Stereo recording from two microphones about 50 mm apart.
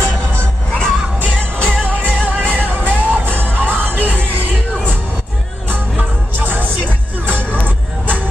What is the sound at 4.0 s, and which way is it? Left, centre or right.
Music, left.